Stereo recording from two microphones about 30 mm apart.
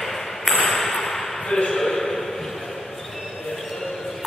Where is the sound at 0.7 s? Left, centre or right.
Centre.